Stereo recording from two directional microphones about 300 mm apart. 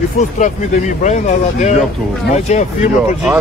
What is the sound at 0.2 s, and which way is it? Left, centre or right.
Speech, left.